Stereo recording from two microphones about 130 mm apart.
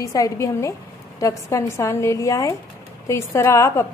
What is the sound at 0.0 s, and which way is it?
A woman's voice, 25° left (ahead or behind).